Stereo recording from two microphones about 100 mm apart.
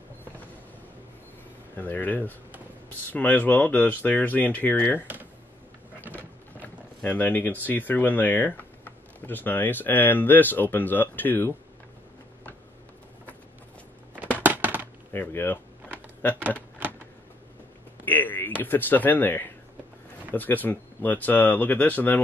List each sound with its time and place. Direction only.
1.8 s speech: 20° left (ahead or behind)
7.0 s speech: 20° left (ahead or behind)
14.4 s a sound: 20° right (ahead or behind)
15.1 s speech: 20° left (ahead or behind)
18.0 s speech: 20° left (ahead or behind)